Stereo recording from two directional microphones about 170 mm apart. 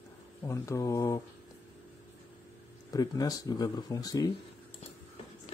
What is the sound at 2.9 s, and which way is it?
Speech, 20° left (ahead or behind).